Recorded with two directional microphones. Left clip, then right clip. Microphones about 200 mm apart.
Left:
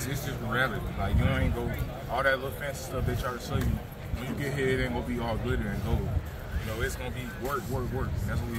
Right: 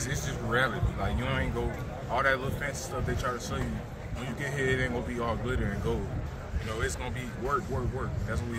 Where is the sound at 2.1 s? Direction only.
20° right (ahead or behind).